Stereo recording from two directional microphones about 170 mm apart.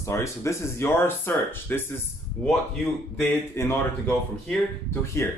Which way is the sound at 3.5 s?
15° left (ahead or behind).